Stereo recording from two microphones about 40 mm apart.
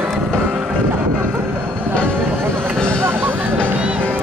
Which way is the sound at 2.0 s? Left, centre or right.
Right.